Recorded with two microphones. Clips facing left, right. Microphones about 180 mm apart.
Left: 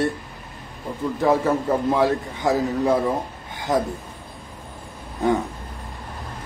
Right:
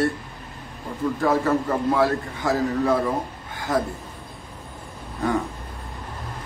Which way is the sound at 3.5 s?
20° left (ahead or behind).